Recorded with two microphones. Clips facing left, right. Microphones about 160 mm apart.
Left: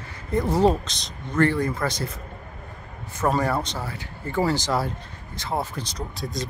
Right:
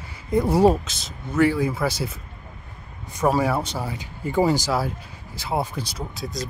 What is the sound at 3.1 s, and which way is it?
Speech, 10° right (ahead or behind).